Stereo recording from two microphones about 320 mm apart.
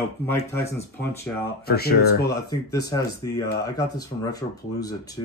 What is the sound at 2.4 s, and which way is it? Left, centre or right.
Speech, centre.